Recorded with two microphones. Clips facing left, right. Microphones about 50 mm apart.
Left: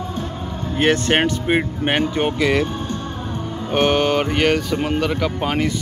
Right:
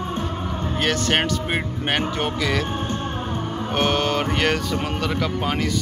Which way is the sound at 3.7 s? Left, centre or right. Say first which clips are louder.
Left 5 dB; centre.